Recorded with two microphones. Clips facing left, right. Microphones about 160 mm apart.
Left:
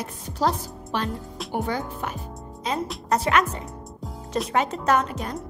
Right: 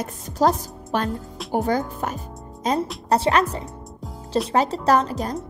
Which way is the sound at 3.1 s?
30° right (ahead or behind).